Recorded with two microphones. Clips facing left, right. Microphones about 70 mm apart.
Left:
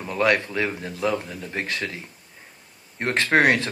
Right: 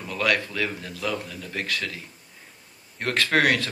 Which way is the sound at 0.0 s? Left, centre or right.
Left.